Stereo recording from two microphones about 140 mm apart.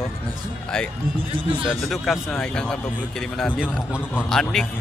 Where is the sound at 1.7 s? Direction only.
Centre (ahead or behind).